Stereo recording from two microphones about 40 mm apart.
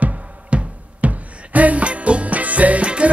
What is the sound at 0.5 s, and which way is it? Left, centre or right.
Music, right.